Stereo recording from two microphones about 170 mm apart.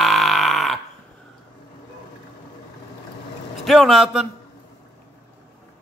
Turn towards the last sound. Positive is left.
turn(degrees=0)  # may be behind; listen again after turning